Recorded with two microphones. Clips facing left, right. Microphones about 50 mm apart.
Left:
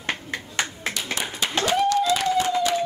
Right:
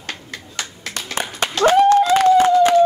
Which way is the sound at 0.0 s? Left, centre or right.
Left.